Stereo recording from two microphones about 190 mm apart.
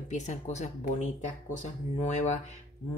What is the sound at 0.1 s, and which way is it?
Speech, 40° left (ahead or behind).